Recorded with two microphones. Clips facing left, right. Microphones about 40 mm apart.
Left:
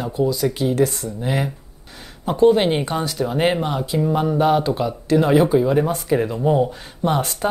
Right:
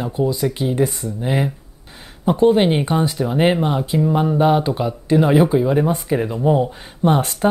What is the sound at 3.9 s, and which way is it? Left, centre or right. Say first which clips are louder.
Speech: right 1 dB; centre.